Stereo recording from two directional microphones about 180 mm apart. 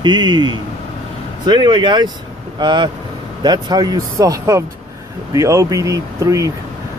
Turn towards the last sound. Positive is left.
turn(degrees=-15)  # may be behind; listen again after turning